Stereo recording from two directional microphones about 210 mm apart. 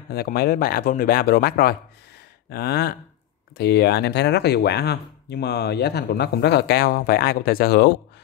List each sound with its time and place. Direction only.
0.1 s speech: 50° left (ahead or behind)